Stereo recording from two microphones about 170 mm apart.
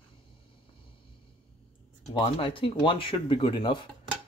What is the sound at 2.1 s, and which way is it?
Speech, 30° left (ahead or behind).